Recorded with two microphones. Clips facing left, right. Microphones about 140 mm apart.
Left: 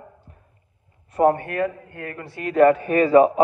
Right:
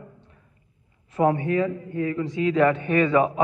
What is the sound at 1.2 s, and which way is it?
Speech, 45° left (ahead or behind).